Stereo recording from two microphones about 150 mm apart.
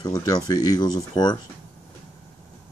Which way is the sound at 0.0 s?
25° left (ahead or behind).